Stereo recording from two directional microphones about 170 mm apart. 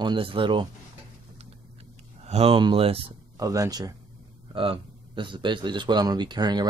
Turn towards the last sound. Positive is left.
turn(degrees=-25)  # may be behind; listen again after turning